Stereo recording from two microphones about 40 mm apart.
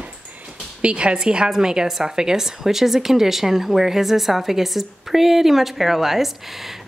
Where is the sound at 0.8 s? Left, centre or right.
Right.